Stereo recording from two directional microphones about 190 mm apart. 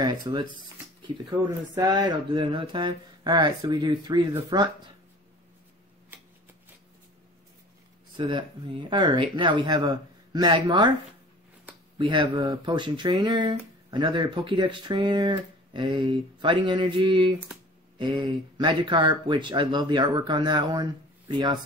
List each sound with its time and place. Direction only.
0.0 s speech: 20° right (ahead or behind)
8.2 s speech: 25° right (ahead or behind)
12.0 s speech: 25° right (ahead or behind)